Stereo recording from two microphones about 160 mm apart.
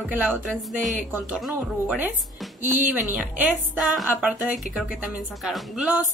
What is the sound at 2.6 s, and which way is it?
Speech, 55° right (ahead or behind).